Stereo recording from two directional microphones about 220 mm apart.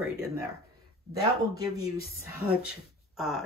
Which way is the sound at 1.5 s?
45° left (ahead or behind).